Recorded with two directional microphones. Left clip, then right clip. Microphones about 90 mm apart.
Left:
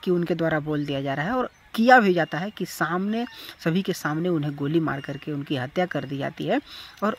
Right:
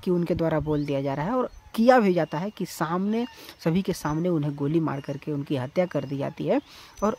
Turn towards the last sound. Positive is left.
turn(degrees=-35)  # may be behind; listen again after turning